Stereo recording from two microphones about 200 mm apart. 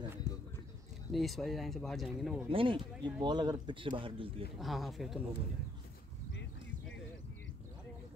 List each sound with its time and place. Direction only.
0.3 s a sound: 20° right (ahead or behind)
1.1 s speech: centre (ahead or behind)
2.5 s speech: 25° right (ahead or behind)
4.6 s speech: centre (ahead or behind)